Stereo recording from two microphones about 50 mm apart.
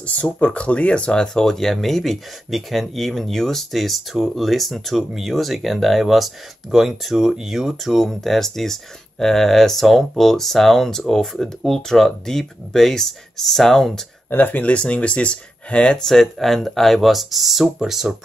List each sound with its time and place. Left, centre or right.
0.0 s speech: left; by 14.0 s centre
14.3 s speech: left
16.0 s speech: centre